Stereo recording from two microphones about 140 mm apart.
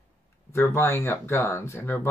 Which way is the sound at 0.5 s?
20° left (ahead or behind).